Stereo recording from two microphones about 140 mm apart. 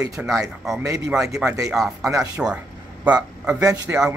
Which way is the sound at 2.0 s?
25° right (ahead or behind).